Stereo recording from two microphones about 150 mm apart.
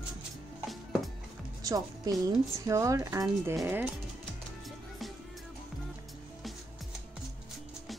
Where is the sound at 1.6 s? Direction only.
25° right (ahead or behind).